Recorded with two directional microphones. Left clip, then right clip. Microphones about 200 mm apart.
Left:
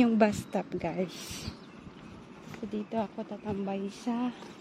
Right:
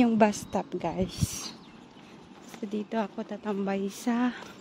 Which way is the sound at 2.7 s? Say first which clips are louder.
Right 2 dB; 15° right (ahead or behind).